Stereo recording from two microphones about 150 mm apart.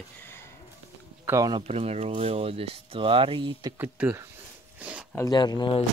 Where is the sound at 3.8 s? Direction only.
15° right (ahead or behind).